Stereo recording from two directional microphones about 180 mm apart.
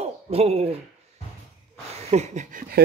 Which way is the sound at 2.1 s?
40° right (ahead or behind).